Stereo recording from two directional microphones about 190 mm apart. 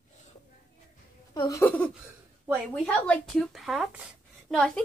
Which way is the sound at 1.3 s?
15° left (ahead or behind).